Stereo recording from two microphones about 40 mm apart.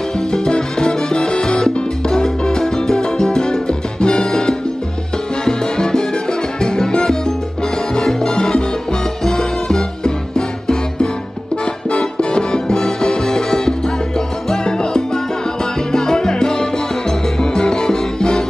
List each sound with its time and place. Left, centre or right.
0.2 s salsa music: centre
9.2 s music: centre